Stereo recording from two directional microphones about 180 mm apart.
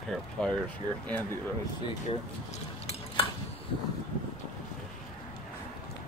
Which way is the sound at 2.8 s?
30° left (ahead or behind).